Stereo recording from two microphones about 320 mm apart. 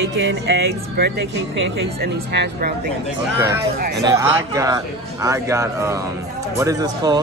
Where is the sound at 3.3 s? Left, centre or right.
Centre.